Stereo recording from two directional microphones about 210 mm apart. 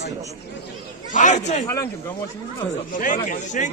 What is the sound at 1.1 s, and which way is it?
Speech, 35° left (ahead or behind).